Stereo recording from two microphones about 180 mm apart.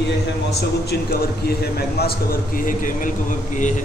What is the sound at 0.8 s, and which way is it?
A man's voice, 60° left (ahead or behind).